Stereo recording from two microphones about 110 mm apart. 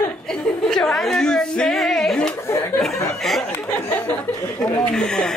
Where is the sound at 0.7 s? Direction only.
5° left (ahead or behind).